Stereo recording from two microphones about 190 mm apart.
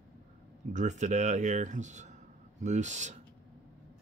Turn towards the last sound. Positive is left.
turn(degrees=-40)  # may be behind; listen again after turning